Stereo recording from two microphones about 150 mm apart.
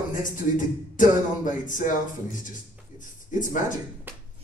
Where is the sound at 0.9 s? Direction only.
60° left (ahead or behind).